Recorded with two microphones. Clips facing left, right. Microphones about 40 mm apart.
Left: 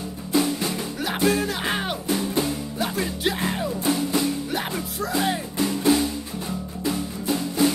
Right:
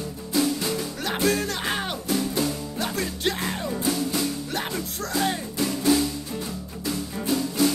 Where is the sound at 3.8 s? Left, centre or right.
Left.